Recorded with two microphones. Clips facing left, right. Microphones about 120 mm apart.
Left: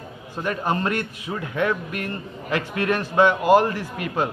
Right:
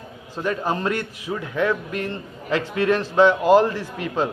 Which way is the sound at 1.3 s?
15° left (ahead or behind).